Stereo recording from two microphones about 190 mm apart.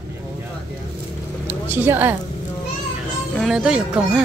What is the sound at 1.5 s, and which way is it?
Speech, 10° right (ahead or behind).